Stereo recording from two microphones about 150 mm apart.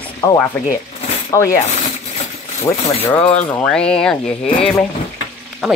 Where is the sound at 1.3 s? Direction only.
20° left (ahead or behind).